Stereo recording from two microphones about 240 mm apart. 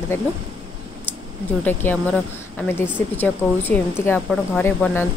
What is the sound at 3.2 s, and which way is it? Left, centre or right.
Speech, centre.